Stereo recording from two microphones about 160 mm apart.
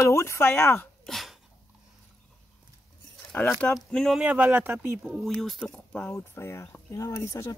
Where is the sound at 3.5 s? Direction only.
5° left (ahead or behind); by 5.0 s 15° right (ahead or behind).